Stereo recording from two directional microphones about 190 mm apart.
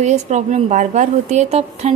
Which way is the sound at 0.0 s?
40° right (ahead or behind).